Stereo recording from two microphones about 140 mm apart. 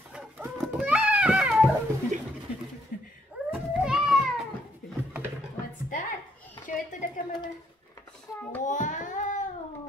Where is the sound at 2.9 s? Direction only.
70° left (ahead or behind).